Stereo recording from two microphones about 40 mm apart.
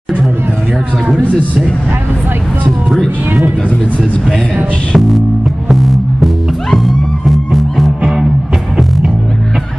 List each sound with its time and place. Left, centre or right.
4.9 s music: centre
8.0 s music: centre